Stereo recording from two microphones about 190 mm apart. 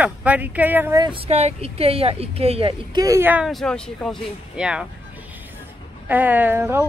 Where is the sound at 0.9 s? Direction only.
25° right (ahead or behind).